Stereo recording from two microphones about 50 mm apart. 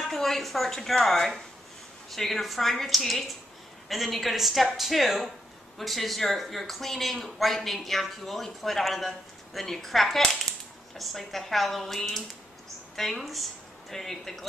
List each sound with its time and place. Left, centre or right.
0.1 s speech: centre